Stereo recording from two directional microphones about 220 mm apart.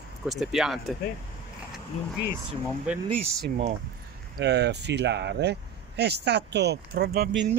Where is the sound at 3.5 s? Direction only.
30° right (ahead or behind).